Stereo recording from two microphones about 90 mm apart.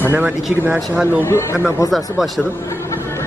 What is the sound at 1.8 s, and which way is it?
Speech, centre (ahead or behind).